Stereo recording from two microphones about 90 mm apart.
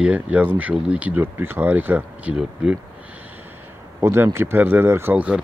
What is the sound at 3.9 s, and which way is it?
Speech, 35° right (ahead or behind).